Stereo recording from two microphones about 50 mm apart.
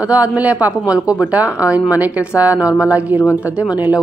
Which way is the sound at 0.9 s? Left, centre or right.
Centre.